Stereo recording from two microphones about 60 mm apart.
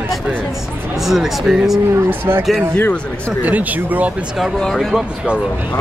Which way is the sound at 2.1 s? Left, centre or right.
Right.